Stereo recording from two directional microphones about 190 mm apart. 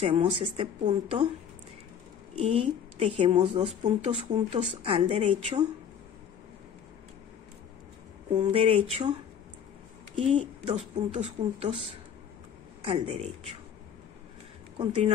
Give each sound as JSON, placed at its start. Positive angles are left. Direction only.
{"t": 0.0, "sound": "speech", "side_deg": -30}
{"t": 2.3, "sound": "a woman's voice", "side_deg": -30}
{"t": 8.4, "sound": "a woman's voice", "side_deg": -30}
{"t": 10.1, "sound": "a woman's voice", "side_deg": -25}
{"t": 12.8, "sound": "a woman's voice", "side_deg": -35}